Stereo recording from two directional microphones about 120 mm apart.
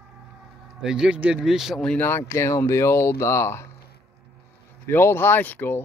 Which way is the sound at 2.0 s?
20° left (ahead or behind).